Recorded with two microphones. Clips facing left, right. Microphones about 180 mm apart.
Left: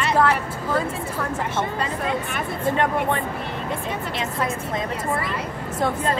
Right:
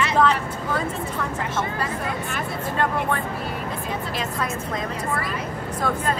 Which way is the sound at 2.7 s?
20° left (ahead or behind).